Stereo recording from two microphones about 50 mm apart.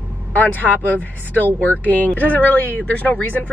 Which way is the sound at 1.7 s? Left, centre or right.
Left.